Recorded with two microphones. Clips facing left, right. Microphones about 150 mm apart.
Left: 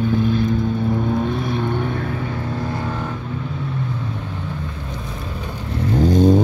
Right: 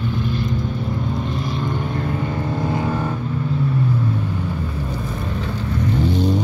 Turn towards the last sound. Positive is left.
turn(degrees=45)  # may be behind; listen again after turning